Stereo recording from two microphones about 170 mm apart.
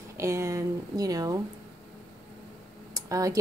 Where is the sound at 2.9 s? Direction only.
20° right (ahead or behind).